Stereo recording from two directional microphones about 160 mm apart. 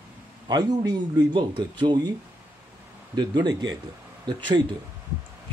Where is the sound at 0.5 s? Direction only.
25° right (ahead or behind).